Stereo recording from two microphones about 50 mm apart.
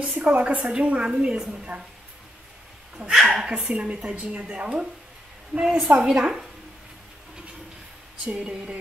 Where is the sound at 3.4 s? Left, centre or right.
Right.